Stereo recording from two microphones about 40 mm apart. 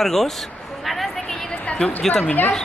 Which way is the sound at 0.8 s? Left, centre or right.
Centre.